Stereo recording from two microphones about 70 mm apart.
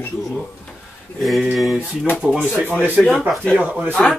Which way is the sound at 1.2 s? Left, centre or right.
Centre.